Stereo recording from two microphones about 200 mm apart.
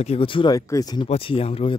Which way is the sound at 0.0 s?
30° left (ahead or behind).